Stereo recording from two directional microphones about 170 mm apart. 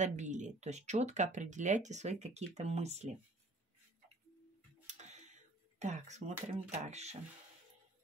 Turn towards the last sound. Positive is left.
turn(degrees=-40)  # may be behind; listen again after turning